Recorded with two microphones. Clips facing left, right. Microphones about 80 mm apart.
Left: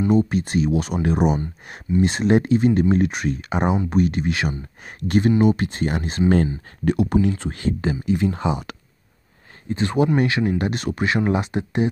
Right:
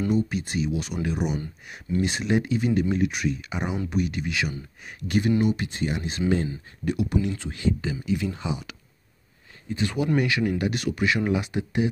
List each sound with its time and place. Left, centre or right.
0.1 s speech: left
9.7 s speech: left